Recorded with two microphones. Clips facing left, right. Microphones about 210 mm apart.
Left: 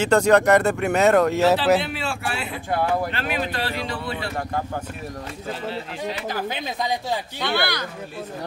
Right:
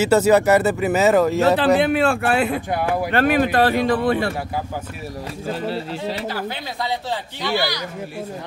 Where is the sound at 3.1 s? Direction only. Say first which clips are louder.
Right 10 dB; 55° right (ahead or behind).